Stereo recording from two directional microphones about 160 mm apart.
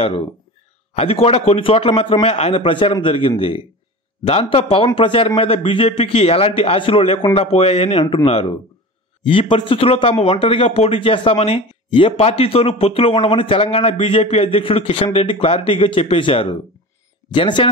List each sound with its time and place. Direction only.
0.9 s a man's voice: 40° left (ahead or behind)
8.0 s a man's voice: 25° left (ahead or behind)
8.3 s a man's voice: 40° left (ahead or behind)